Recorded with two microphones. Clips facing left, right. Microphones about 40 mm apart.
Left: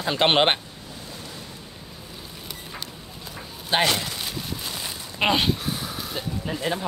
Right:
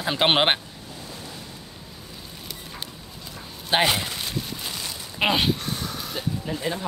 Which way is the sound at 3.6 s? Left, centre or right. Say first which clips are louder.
Right 1 dB; centre.